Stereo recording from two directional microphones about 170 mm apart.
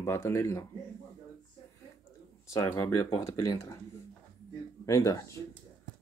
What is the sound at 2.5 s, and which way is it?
Speech, 15° left (ahead or behind).